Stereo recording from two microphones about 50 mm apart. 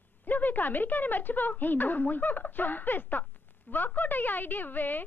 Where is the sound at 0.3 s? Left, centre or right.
Left.